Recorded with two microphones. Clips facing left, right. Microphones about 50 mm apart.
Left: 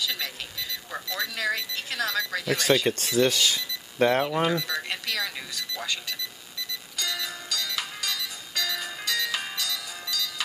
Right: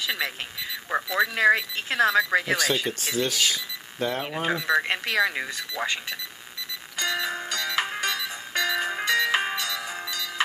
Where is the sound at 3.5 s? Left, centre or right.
Left.